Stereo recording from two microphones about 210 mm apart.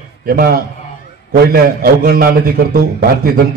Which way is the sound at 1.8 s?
45° right (ahead or behind).